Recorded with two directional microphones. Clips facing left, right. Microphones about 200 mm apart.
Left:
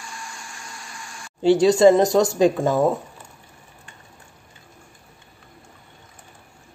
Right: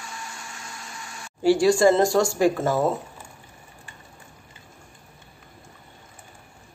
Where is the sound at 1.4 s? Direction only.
20° left (ahead or behind).